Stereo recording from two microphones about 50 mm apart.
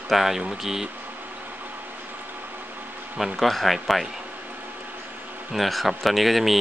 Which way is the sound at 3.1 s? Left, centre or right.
Centre.